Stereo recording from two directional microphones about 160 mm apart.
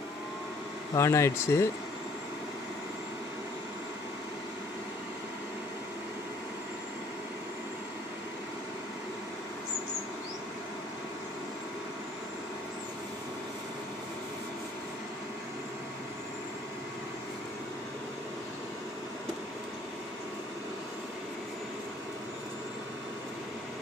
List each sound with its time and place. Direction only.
0.9 s speech: 15° left (ahead or behind)